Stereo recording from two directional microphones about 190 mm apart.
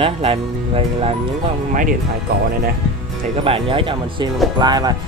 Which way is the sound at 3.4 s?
30° right (ahead or behind).